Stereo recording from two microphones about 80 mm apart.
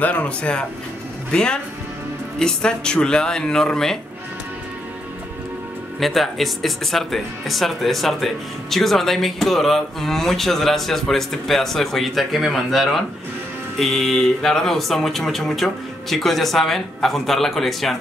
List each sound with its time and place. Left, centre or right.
0.0 s speech: centre
5.9 s speech: centre